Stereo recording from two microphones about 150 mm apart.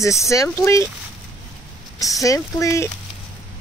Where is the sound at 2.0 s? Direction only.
20° left (ahead or behind).